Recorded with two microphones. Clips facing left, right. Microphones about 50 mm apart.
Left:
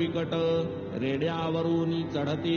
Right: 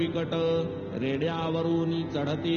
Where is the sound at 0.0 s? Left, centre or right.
Centre.